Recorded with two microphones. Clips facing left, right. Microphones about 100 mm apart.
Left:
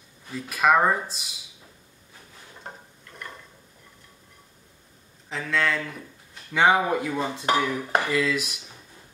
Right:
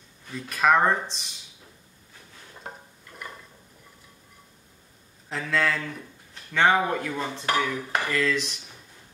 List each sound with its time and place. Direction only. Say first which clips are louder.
0.5 s speech: left 1 dB; 5° left (ahead or behind)
2.6 s a sound: right 1 dB; 5° right (ahead or behind)
5.3 s speech: even; centre (ahead or behind)
6.5 s speech: left 1 dB; 10° left (ahead or behind)